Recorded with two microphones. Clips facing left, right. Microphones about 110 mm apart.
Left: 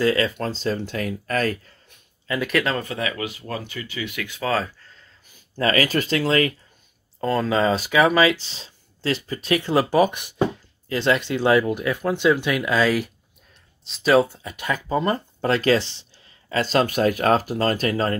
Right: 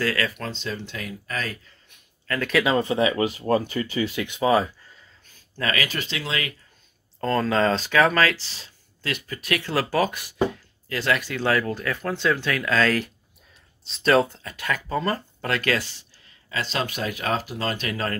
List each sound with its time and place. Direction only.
0.0 s speech: 25° left (ahead or behind)
0.4 s speech: 40° left (ahead or behind)
2.3 s speech: 20° left (ahead or behind)
2.6 s speech: 20° right (ahead or behind)
5.6 s speech: 35° left (ahead or behind)
7.2 s speech: 5° left (ahead or behind); by 16.1 s 25° left (ahead or behind)
16.4 s speech: 45° left (ahead or behind)